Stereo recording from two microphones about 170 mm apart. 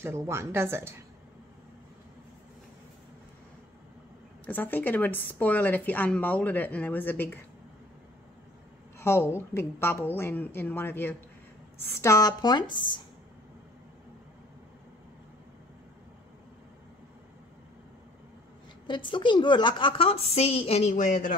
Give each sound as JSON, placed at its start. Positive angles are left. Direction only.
{"t": 0.0, "sound": "speech", "side_deg": -15}
{"t": 4.5, "sound": "a woman's voice", "side_deg": 10}
{"t": 8.9, "sound": "a woman's voice", "side_deg": 15}
{"t": 18.9, "sound": "a woman's voice", "side_deg": 30}